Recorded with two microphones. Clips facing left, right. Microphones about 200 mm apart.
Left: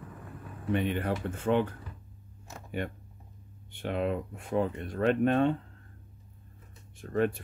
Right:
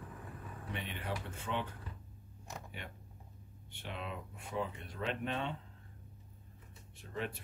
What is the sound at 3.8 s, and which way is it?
Speech, 55° left (ahead or behind).